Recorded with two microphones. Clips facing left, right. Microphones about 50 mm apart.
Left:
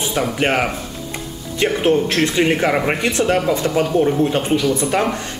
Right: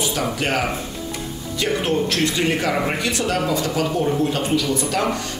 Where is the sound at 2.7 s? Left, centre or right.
Centre.